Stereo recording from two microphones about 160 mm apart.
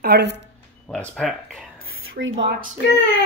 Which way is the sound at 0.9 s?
5° left (ahead or behind).